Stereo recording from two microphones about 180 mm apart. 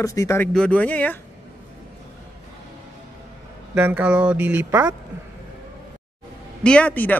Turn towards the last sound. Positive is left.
turn(degrees=10)  # may be behind; listen again after turning